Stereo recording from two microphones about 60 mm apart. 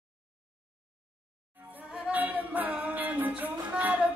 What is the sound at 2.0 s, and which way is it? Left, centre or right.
Music, right.